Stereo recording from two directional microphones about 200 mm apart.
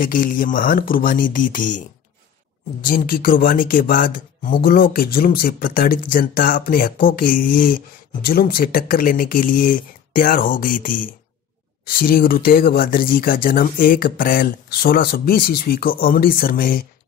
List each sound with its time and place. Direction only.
0.0 s speech: 45° left (ahead or behind)
2.8 s speech: 45° left (ahead or behind)